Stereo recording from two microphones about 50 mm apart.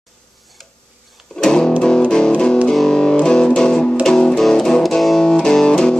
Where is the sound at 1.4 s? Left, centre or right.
Centre.